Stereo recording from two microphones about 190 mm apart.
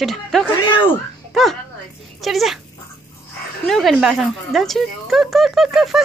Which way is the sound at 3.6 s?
Centre (ahead or behind).